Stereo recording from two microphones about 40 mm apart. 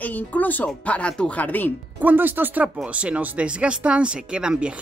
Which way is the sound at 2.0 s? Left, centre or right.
Right.